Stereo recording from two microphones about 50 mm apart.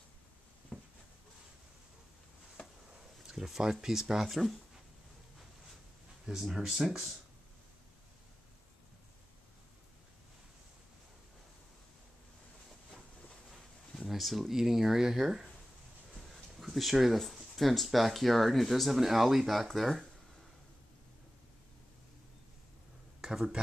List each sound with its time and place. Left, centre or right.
0.7 s a sound: centre
2.9 s speech: centre
6.2 s speech: centre
13.5 s a sound: centre
14.5 s speech: centre
16.5 s speech: centre
23.2 s speech: centre